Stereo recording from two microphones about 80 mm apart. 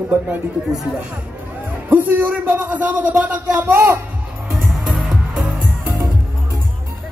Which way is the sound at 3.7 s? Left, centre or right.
Right.